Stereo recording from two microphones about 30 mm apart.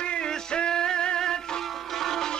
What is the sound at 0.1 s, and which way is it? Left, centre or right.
Music, left.